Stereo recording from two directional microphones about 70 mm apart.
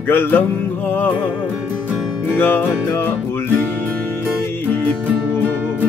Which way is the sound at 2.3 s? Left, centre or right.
Left.